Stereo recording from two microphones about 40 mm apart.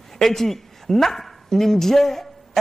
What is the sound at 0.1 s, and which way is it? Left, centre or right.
Speech, centre.